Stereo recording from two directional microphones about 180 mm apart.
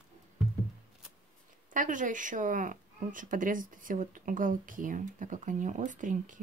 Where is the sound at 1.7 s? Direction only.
45° right (ahead or behind).